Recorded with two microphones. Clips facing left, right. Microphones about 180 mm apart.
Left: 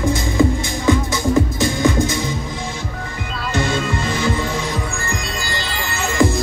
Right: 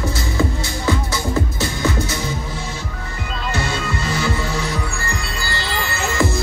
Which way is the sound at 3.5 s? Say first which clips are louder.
Left 4 dB; 15° left (ahead or behind).